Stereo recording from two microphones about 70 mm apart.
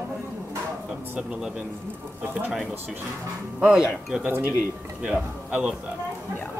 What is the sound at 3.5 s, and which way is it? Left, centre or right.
Speech, centre.